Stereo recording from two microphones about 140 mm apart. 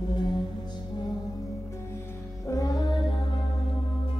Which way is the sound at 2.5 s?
25° left (ahead or behind).